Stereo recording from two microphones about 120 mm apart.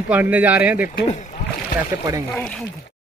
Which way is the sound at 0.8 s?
85° left.